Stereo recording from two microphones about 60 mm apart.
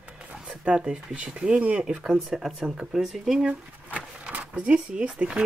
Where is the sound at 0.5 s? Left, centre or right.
Centre.